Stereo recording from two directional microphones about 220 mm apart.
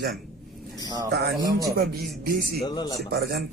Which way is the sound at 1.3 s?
15° right (ahead or behind).